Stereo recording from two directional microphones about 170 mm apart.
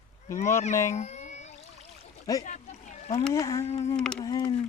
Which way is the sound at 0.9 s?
40° left (ahead or behind).